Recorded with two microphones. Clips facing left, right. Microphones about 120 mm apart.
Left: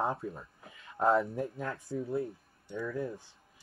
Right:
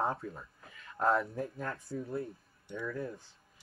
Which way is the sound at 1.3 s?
10° left (ahead or behind).